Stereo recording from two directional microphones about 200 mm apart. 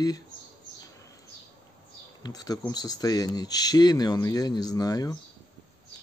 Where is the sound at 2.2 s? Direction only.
20° left (ahead or behind).